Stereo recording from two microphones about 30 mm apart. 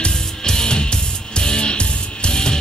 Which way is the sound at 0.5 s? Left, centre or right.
Left.